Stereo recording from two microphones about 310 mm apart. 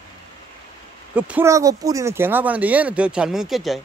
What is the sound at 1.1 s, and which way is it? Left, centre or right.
Speech, centre.